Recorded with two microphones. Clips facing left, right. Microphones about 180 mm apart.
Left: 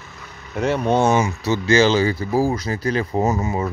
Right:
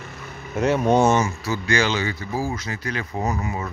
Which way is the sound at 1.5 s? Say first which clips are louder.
Left 9 dB; 25° left (ahead or behind).